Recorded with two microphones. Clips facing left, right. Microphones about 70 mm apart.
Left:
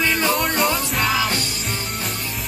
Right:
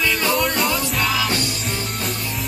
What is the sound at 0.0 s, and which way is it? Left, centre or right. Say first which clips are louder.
Music: left 1 dB; left.